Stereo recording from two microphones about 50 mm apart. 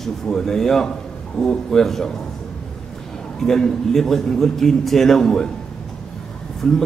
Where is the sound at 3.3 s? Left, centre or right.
Centre.